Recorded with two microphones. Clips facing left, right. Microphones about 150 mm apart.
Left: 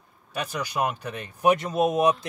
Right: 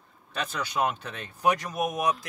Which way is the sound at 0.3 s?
10° left (ahead or behind).